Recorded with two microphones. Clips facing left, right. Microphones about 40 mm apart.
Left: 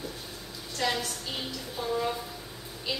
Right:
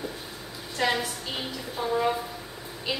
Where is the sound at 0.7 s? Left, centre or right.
Centre.